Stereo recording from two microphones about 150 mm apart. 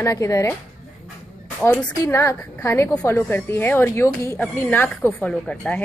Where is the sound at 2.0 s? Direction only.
20° left (ahead or behind).